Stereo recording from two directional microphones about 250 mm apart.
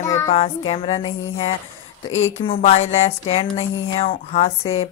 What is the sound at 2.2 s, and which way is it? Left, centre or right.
A woman's voice, left.